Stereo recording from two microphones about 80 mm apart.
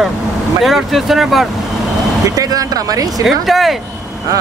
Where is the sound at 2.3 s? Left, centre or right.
Right.